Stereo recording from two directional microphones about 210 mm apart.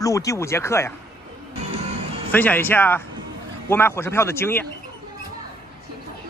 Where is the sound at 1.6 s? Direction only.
30° right (ahead or behind).